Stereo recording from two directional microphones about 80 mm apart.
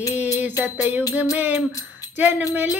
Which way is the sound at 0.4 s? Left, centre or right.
Right.